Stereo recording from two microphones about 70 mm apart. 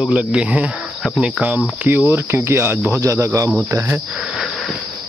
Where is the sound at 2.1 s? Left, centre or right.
Right.